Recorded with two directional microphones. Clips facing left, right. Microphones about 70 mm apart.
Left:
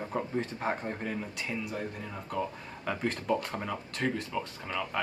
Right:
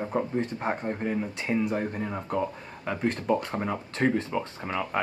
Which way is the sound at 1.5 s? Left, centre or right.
Right.